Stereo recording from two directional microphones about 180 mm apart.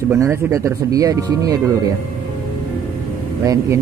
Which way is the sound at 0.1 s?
15° right (ahead or behind).